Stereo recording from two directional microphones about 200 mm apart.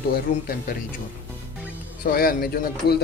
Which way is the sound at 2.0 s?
50° left (ahead or behind).